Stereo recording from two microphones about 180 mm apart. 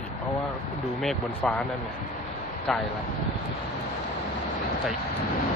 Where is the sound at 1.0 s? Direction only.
5° left (ahead or behind).